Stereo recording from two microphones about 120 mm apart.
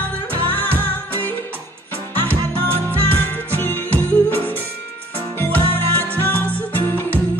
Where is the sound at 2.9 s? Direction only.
15° left (ahead or behind).